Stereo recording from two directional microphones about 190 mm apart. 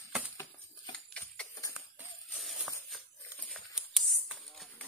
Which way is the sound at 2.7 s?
10° right (ahead or behind).